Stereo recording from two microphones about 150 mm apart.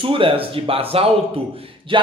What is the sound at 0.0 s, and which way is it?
A man's voice, 35° right (ahead or behind).